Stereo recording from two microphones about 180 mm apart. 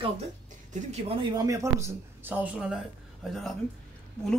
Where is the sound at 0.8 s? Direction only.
35° right (ahead or behind).